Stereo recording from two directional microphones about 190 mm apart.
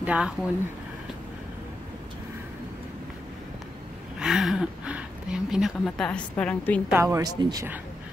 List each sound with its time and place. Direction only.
0.0 s speech: 5° right (ahead or behind)
4.2 s speech: centre (ahead or behind)
6.9 s speech: 15° right (ahead or behind)